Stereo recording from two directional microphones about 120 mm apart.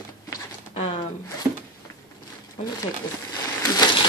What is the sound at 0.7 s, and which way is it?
Speech, 60° left (ahead or behind).